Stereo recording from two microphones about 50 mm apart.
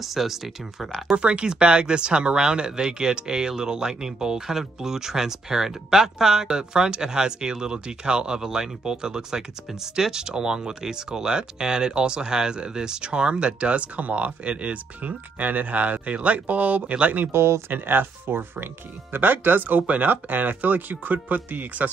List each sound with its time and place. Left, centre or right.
0.0 s speech: centre
1.1 s speech: right
17.3 s speech: right
17.7 s speech: right